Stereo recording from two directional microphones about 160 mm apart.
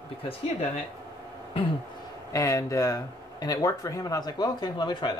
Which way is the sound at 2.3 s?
20° left (ahead or behind).